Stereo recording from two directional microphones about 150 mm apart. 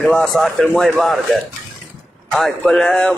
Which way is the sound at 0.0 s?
5° left (ahead or behind).